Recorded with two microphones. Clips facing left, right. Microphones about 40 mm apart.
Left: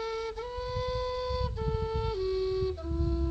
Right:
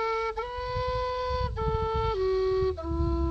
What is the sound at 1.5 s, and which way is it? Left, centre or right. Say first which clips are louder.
Flute: right 4 dB; right.